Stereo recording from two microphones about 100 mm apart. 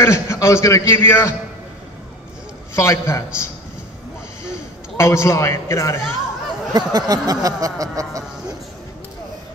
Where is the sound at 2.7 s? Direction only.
30° left (ahead or behind).